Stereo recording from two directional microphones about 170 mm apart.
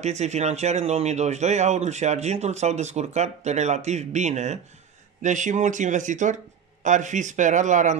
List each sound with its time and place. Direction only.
0.0 s a man's voice: 40° right (ahead or behind)